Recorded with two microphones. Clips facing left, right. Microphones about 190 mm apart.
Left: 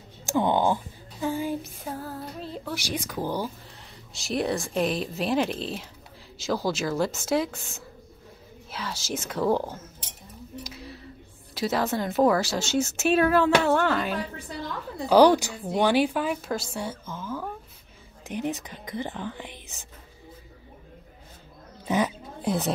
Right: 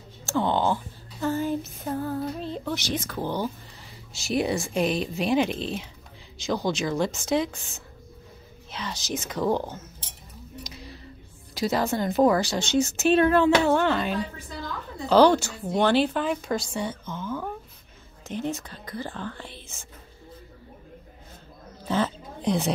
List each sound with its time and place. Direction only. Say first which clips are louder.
0.3 s a woman's voice: left 1 dB; 15° left (ahead or behind)
4.1 s speech: right 2 dB; centre (ahead or behind)
8.7 s a woman's voice: right 1 dB; 5° left (ahead or behind)
10.6 s a sound: even; 5° left (ahead or behind)
11.5 s speech: right 1 dB; 5° left (ahead or behind)
15.0 s a woman's voice: even; 15° left (ahead or behind)
21.8 s cat: left 1 dB; 15° left (ahead or behind)